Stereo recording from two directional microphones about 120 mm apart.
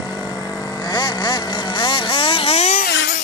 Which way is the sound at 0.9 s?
35° left (ahead or behind).